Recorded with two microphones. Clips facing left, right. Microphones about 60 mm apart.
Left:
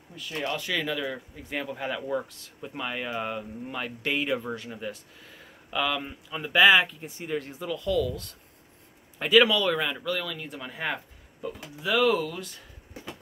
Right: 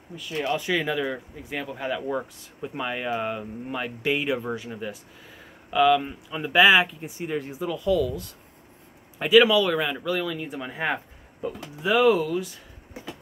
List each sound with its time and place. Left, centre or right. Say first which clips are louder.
0.4 s speech: right 4 dB; centre
1.5 s speech: right 2 dB; centre; by 12.1 s right
12.1 s speech: right 5 dB; centre